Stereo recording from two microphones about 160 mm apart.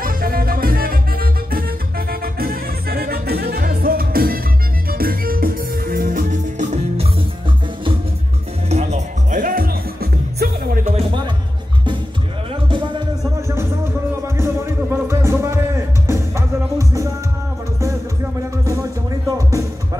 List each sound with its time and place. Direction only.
0.0 s music: 65° right (ahead or behind); by 7.1 s 50° right (ahead or behind)
8.6 s music: 45° right (ahead or behind); by 10.9 s 65° right (ahead or behind)
10.9 s music: 35° right (ahead or behind)
12.6 s music: 30° right (ahead or behind)
14.2 s music: 15° right (ahead or behind)
18.7 s music: 20° right (ahead or behind)